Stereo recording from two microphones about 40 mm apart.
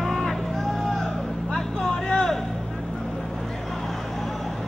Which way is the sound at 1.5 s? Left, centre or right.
Centre.